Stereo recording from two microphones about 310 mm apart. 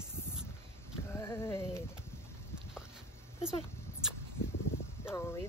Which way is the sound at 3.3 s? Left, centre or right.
Centre.